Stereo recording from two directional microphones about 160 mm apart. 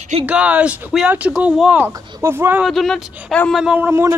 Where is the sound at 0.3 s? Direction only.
10° right (ahead or behind).